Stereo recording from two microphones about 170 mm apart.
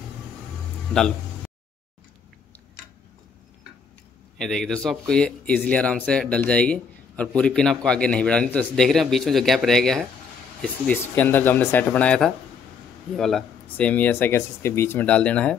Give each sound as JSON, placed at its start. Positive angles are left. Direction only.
{"t": 4.4, "sound": "speech", "side_deg": 5}